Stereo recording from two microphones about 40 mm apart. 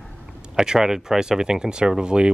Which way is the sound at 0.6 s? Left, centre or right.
Centre.